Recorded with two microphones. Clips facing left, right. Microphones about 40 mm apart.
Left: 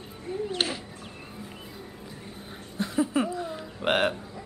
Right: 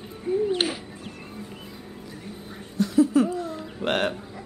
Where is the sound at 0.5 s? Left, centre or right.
Centre.